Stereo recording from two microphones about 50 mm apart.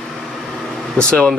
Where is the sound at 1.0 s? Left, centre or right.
Centre.